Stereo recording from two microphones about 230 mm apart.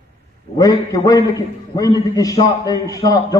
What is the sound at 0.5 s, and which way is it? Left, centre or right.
A man's voice, centre.